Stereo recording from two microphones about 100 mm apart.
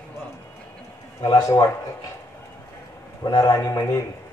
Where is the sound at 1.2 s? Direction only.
35° left (ahead or behind).